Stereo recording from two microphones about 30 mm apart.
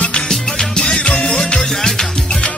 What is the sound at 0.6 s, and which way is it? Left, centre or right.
Music, centre.